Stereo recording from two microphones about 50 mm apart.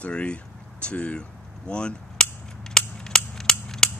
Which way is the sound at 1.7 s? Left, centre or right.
Centre.